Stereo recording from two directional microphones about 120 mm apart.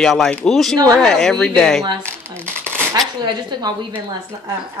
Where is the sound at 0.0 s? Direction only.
5° left (ahead or behind).